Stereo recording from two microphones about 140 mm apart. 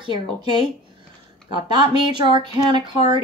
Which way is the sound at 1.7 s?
35° right (ahead or behind).